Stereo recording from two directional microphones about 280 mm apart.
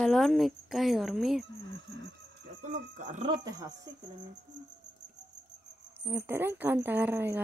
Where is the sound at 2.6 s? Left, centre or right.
Right.